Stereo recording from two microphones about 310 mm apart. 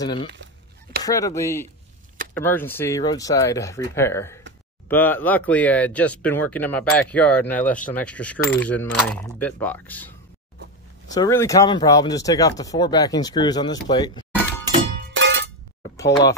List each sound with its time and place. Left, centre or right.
0.0 s speech: centre
11.1 s speech: centre
14.7 s music: right